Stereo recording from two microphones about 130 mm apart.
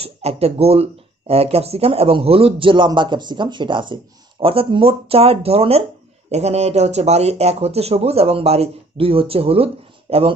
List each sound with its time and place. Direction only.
0.0 s speech: 50° right (ahead or behind)